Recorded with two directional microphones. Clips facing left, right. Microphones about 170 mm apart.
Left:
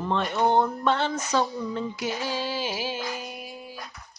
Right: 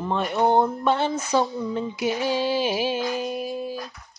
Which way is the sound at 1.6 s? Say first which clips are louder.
Right 4 dB; 15° right (ahead or behind).